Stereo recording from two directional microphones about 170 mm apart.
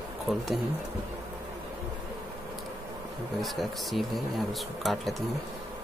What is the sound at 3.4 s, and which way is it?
Speech, centre (ahead or behind).